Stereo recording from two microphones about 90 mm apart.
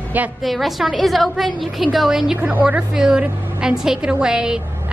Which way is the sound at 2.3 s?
20° right (ahead or behind).